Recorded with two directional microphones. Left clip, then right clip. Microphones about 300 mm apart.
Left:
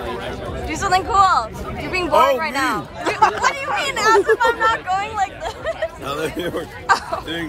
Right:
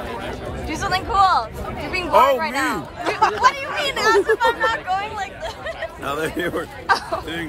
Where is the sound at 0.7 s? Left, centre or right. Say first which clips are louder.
Left 4 dB; centre.